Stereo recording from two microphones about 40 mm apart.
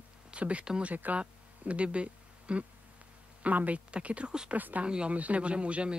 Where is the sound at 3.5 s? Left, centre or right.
Right.